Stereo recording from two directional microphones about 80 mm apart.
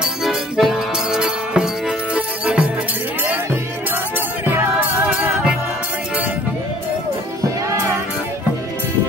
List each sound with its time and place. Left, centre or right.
0.0 s music: centre
4.7 s music: right